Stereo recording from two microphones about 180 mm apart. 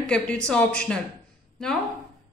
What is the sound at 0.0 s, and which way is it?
Speech, 5° left (ahead or behind).